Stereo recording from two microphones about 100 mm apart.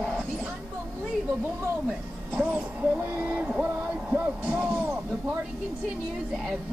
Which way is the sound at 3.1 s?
15° right (ahead or behind).